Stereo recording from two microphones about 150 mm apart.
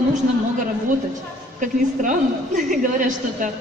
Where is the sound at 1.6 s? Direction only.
60° right (ahead or behind).